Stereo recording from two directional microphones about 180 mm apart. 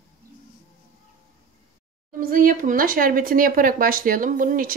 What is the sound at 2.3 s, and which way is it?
Speech, 50° right (ahead or behind).